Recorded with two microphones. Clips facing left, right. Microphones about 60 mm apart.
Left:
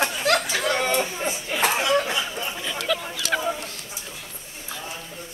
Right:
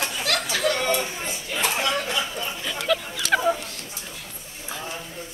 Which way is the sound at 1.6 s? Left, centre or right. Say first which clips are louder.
Left 2 dB; centre.